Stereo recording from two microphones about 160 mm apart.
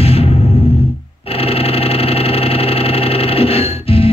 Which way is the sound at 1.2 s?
40° left (ahead or behind).